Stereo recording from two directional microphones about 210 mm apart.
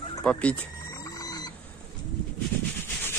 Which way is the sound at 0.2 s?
5° left (ahead or behind).